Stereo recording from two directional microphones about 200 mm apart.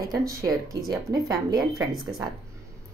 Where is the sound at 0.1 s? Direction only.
15° right (ahead or behind).